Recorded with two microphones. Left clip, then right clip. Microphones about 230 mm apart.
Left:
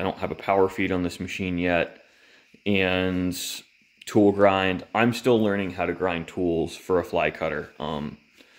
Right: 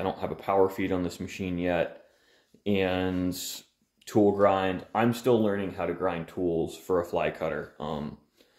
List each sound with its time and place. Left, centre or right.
0.0 s speech: left